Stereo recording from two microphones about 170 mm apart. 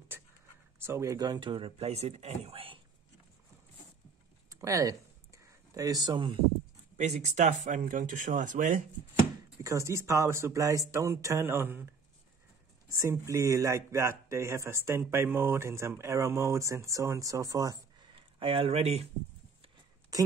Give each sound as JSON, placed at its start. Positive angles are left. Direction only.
{"t": 0.7, "sound": "speech", "side_deg": -15}
{"t": 4.5, "sound": "a sound", "side_deg": -20}
{"t": 7.0, "sound": "speech", "side_deg": -45}
{"t": 9.6, "sound": "speech", "side_deg": -20}
{"t": 12.9, "sound": "speech", "side_deg": -20}